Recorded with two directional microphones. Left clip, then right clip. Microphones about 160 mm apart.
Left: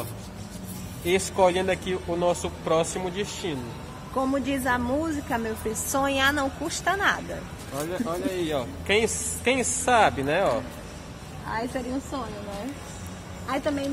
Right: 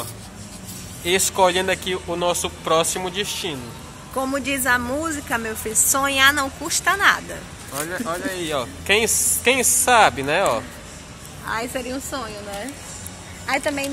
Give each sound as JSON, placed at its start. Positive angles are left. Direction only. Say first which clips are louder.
{"t": 1.0, "sound": "speech", "louder": "right 4 dB", "side_deg": -10}
{"t": 4.2, "sound": "a woman's voice", "louder": "right 3 dB", "side_deg": 20}
{"t": 7.7, "sound": "speech", "louder": "right 3 dB", "side_deg": -20}
{"t": 11.5, "sound": "a woman's voice", "louder": "right 4 dB", "side_deg": 20}
{"t": 13.5, "sound": "speech", "louder": "right 5 dB", "side_deg": 5}